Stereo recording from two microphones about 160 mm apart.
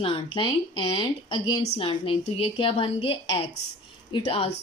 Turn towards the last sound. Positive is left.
turn(degrees=35)  # may be behind; listen again after turning